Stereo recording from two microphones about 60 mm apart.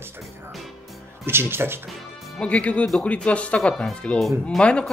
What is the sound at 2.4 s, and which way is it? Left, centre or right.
Speech, left.